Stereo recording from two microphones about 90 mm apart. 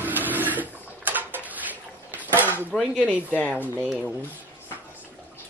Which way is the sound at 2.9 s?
15° right (ahead or behind).